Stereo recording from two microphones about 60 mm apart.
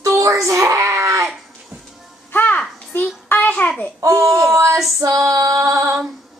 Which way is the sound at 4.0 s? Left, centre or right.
Right.